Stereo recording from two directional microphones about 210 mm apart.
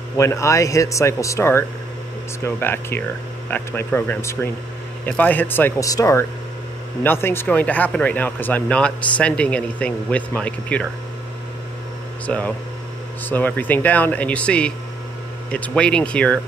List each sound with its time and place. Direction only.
0.2 s speech: 15° left (ahead or behind)
12.3 s speech: 5° left (ahead or behind)